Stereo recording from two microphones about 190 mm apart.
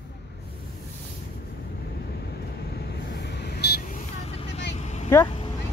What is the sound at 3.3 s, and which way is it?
Vehicle, 60° left (ahead or behind).